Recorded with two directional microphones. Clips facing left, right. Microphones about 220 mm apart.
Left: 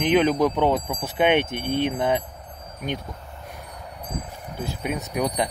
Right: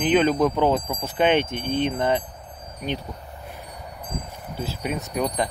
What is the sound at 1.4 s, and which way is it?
Speech, 60° left (ahead or behind).